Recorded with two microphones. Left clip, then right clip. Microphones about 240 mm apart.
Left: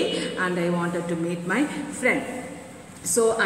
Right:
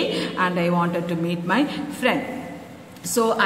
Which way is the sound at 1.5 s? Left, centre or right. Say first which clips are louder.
Right 4 dB; right.